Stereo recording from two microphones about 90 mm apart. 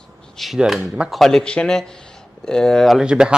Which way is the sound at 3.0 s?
10° right (ahead or behind).